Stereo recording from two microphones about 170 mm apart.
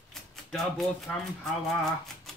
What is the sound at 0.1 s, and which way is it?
Speech, centre (ahead or behind).